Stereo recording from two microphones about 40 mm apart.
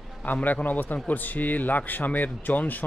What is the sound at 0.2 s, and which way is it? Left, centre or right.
Speech, left.